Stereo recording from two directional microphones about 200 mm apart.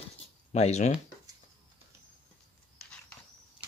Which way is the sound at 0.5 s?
35° left (ahead or behind).